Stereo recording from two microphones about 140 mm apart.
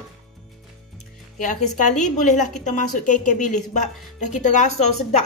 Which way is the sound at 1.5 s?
60° left (ahead or behind).